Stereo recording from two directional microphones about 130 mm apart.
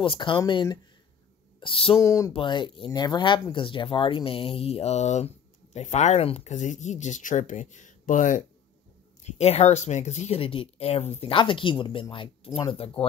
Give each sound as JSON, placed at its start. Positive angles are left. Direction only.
{"t": 0.0, "sound": "speech", "side_deg": 40}
{"t": 1.6, "sound": "speech", "side_deg": 45}
{"t": 2.0, "sound": "speech", "side_deg": 25}
{"t": 2.3, "sound": "speech", "side_deg": 40}
{"t": 9.2, "sound": "speech", "side_deg": 55}